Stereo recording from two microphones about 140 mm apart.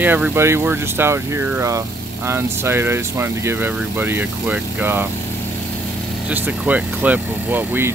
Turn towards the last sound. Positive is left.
turn(degrees=-15)  # may be behind; listen again after turning